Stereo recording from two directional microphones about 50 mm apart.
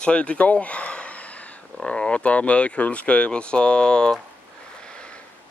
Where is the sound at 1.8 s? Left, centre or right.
Centre.